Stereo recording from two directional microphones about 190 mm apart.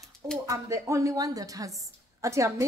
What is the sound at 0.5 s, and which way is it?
A woman's voice, 15° right (ahead or behind).